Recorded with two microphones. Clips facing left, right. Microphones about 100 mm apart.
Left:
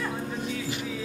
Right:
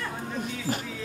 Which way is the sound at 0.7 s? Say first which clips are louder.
Right 3 dB; 45° right (ahead or behind).